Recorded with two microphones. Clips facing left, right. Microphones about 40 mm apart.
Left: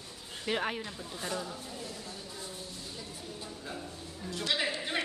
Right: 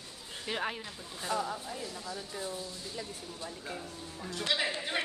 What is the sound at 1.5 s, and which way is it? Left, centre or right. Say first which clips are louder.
Speech: right 3 dB; right.